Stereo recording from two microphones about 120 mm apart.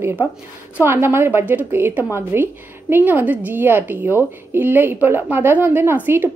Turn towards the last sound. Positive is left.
turn(degrees=-20)  # may be behind; listen again after turning